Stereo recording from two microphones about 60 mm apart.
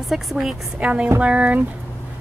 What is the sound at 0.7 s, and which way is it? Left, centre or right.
Music, centre.